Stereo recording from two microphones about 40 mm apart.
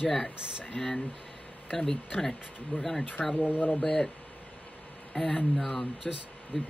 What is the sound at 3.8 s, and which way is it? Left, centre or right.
Speech, left.